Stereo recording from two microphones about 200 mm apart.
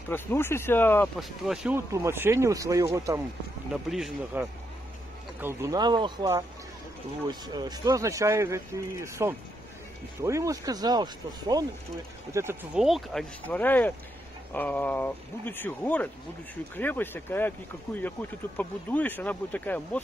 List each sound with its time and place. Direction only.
0.1 s speech: 10° left (ahead or behind)
1.9 s speech: 15° right (ahead or behind)
3.7 s a man's voice: centre (ahead or behind)
12.8 s speech: centre (ahead or behind)